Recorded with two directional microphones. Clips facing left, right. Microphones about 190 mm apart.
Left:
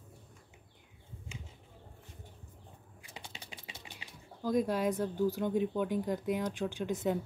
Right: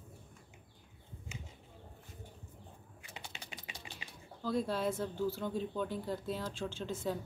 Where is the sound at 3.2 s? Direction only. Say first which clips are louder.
Even; 30° left (ahead or behind).